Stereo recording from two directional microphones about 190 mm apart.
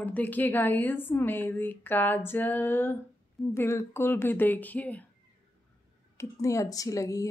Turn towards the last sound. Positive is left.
turn(degrees=15)  # may be behind; listen again after turning